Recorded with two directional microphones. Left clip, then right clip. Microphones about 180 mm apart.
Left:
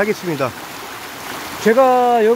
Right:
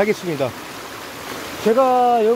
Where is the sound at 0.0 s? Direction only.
5° left (ahead or behind).